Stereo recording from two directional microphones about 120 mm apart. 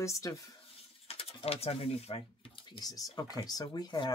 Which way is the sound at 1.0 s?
55° left (ahead or behind).